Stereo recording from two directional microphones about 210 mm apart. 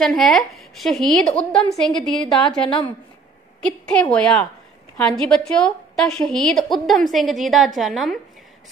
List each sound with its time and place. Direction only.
0.0 s a woman's voice: centre (ahead or behind)
2.6 s a woman's voice: 25° left (ahead or behind)
3.8 s a woman's voice: 5° left (ahead or behind)